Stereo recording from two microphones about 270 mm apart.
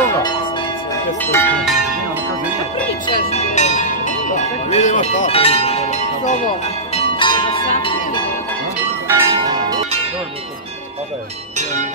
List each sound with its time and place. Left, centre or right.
1.2 s bell: centre
3.2 s music: left
9.0 s change ringing: centre